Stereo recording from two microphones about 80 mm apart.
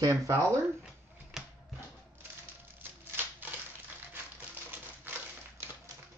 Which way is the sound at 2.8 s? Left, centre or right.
Right.